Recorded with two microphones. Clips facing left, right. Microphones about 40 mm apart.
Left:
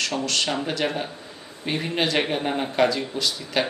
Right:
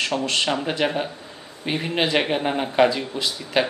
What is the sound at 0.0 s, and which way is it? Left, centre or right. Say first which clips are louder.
Speech: right 2 dB; right.